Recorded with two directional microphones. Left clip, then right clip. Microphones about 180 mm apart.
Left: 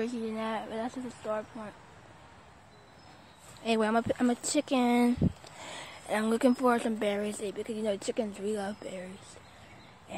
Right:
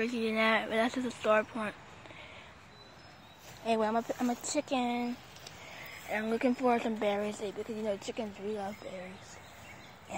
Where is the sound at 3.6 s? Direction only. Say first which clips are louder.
Left 2 dB; 50° left (ahead or behind).